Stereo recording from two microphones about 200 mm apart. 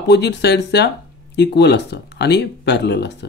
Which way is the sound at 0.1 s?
55° left (ahead or behind).